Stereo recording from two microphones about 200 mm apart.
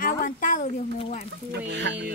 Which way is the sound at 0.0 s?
40° left (ahead or behind).